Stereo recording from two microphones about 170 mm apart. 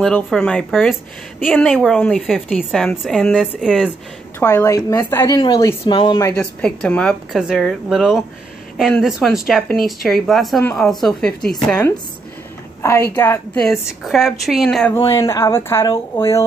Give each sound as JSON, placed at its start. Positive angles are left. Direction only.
{"t": 0.0, "sound": "a woman's voice", "side_deg": 5}
{"t": 4.4, "sound": "a woman's voice", "side_deg": 15}
{"t": 6.2, "sound": "a woman's voice", "side_deg": 5}
{"t": 13.1, "sound": "a woman's voice", "side_deg": 10}
{"t": 13.7, "sound": "a woman's voice", "side_deg": 0}
{"t": 15.0, "sound": "a woman's voice", "side_deg": 20}